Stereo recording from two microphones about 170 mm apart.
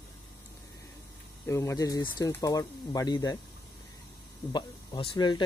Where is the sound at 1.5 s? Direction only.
15° left (ahead or behind).